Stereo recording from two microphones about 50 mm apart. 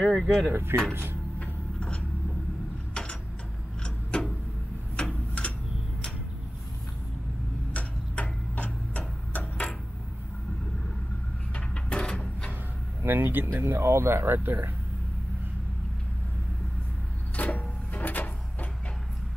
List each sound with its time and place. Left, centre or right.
0.0 s speech: centre
0.5 s speech: right
1.4 s a sound: left
4.9 s tick-tock: left
7.7 s tick-tock: left
11.5 s a sound: left
13.0 s speech: right
13.7 s speech: right
17.4 s a sound: left